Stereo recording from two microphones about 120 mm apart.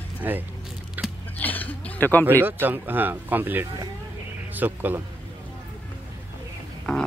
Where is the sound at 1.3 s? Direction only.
15° left (ahead or behind).